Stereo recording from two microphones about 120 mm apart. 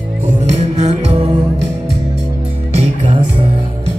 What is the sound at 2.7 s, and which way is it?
Music, 45° right (ahead or behind).